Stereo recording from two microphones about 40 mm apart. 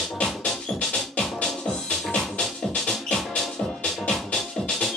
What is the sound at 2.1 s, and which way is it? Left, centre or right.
Music, left.